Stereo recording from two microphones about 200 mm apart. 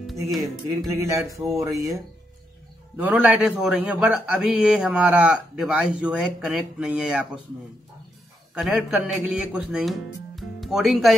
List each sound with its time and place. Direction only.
0.0 s music: centre (ahead or behind)
0.9 s speech: 15° right (ahead or behind)
3.0 s a man's voice: 5° right (ahead or behind)
8.5 s a man's voice: centre (ahead or behind)